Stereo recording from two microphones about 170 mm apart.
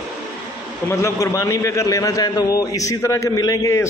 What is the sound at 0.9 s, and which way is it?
A man's voice, 15° left (ahead or behind).